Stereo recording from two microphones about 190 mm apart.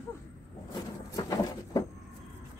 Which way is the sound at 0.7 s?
20° left (ahead or behind).